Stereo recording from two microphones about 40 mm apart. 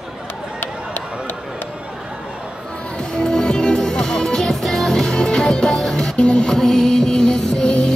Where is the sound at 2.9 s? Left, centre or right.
Centre.